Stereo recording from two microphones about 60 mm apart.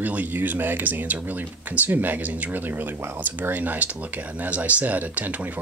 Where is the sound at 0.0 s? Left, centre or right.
Right.